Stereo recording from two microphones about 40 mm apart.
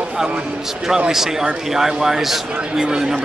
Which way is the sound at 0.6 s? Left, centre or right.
Centre.